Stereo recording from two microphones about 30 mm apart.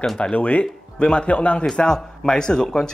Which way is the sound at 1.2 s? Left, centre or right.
Left.